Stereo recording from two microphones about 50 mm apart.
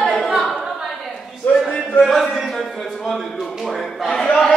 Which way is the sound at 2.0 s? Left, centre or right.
Centre.